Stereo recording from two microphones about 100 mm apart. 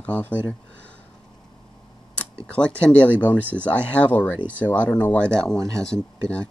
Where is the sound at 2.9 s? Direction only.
15° left (ahead or behind).